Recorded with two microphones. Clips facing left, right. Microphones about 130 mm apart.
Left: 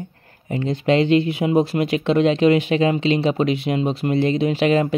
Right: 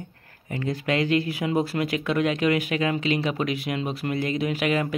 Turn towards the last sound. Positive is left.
turn(degrees=30)  # may be behind; listen again after turning